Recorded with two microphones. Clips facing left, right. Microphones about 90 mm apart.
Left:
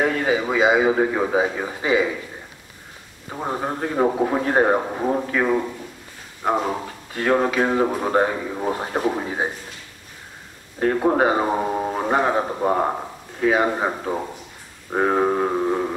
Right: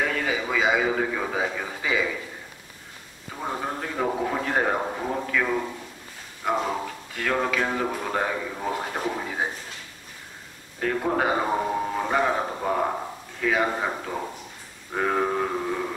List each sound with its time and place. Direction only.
0.0 s a man's voice: 30° left (ahead or behind)
3.3 s a man's voice: 25° left (ahead or behind)
6.5 s speech: 15° left (ahead or behind)
7.2 s a man's voice: 30° left (ahead or behind)
11.0 s a man's voice: 30° left (ahead or behind)
14.9 s a sound: 30° left (ahead or behind)